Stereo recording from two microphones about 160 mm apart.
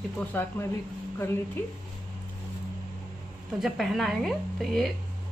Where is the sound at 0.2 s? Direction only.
15° left (ahead or behind).